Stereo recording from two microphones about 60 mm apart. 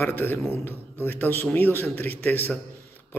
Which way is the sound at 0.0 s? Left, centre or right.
Left.